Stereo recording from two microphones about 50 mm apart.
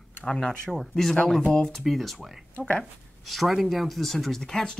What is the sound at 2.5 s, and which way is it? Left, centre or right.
Speech, left.